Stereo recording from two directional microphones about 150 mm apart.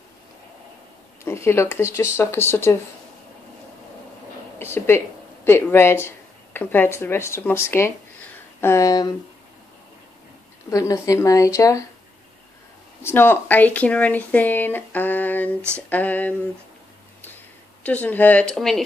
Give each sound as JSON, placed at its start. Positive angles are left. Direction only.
{"t": 1.2, "sound": "speech", "side_deg": 15}
{"t": 4.6, "sound": "a woman's voice", "side_deg": 15}
{"t": 10.7, "sound": "a woman's voice", "side_deg": 20}
{"t": 13.0, "sound": "speech", "side_deg": 15}
{"t": 17.8, "sound": "speech", "side_deg": 10}